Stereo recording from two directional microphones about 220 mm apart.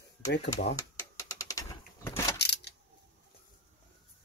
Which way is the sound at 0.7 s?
15° left (ahead or behind).